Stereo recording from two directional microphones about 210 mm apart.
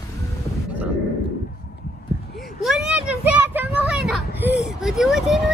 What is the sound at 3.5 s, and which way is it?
Vehicle, 5° right (ahead or behind).